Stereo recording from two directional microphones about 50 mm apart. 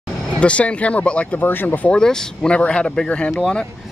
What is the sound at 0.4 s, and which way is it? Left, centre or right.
Speech, left.